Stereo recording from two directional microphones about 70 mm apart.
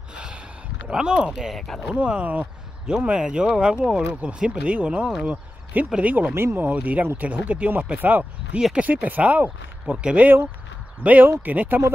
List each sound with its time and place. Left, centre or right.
0.1 s a sound: centre
0.8 s speech: centre
1.3 s speech: centre
2.0 s speech: centre
6.3 s speech: right
8.5 s speech: centre
8.8 s speech: right